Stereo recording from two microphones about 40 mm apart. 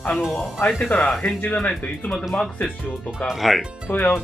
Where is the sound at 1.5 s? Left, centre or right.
Left.